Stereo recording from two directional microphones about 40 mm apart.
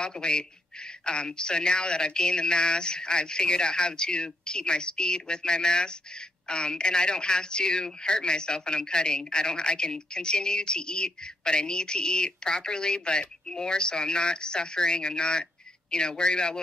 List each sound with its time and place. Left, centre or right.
0.0 s speech: left